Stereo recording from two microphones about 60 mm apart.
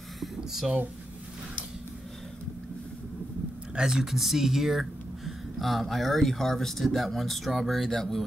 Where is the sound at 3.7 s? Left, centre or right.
Centre.